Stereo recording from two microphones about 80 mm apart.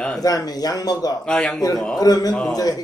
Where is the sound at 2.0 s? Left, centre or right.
Left.